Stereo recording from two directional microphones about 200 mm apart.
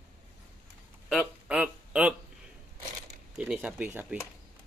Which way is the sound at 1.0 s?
5° right (ahead or behind).